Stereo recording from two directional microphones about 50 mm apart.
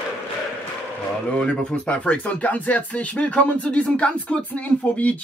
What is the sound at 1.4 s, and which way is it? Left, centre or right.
Speech, centre.